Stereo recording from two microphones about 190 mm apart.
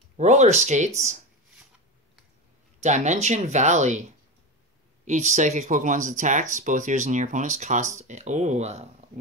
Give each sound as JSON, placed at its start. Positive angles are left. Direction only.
{"t": 0.2, "sound": "speech", "side_deg": -40}
{"t": 2.8, "sound": "speech", "side_deg": -40}
{"t": 5.0, "sound": "speech", "side_deg": -40}